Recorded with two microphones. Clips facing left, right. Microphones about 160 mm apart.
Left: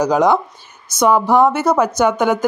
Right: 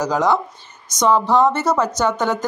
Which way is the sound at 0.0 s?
15° left (ahead or behind).